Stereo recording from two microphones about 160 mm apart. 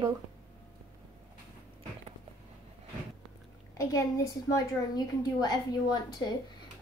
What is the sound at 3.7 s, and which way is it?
A woman's voice, 20° left (ahead or behind).